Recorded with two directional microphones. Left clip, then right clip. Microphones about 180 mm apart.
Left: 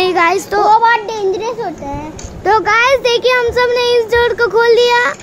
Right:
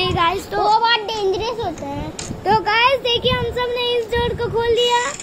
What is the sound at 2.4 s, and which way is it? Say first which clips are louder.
Speech: left 5 dB; 45° left (ahead or behind).